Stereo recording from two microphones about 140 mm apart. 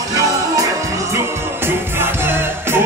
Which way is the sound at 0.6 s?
20° right (ahead or behind).